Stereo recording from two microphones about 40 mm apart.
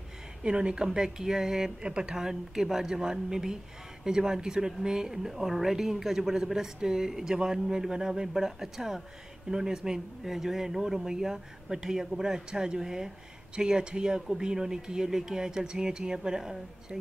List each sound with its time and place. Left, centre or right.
0.4 s a woman's voice: right
0.8 s a woman's voice: centre